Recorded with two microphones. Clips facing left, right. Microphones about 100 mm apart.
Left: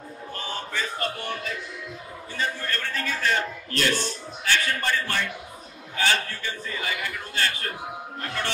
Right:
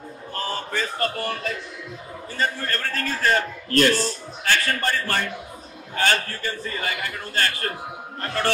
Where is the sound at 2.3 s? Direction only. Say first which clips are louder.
Right 3 dB; 45° right (ahead or behind).